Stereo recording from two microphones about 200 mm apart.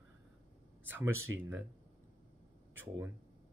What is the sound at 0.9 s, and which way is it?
Speech, 10° right (ahead or behind).